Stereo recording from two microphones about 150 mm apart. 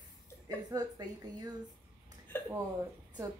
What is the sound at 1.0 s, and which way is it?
Speech, 25° right (ahead or behind).